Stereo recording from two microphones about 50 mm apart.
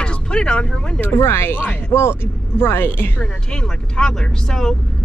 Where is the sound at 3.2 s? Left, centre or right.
Centre.